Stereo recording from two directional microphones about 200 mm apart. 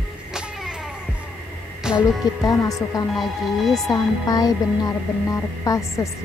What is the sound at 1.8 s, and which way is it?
Music, 5° right (ahead or behind).